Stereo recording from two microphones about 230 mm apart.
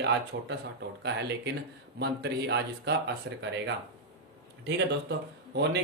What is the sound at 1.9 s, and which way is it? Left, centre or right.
Speech, right.